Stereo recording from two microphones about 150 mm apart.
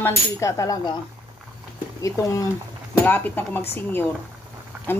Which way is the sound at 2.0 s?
20° left (ahead or behind).